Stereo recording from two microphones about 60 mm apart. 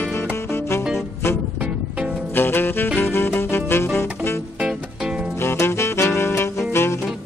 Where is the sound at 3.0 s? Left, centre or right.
Left.